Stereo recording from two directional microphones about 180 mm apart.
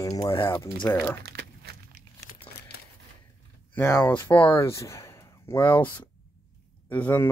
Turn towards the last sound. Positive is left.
turn(degrees=10)  # may be behind; listen again after turning